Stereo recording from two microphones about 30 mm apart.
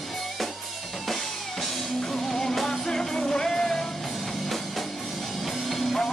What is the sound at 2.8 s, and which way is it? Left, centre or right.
Music, left.